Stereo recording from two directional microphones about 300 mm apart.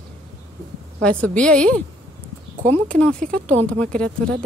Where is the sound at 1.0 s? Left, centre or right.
Centre.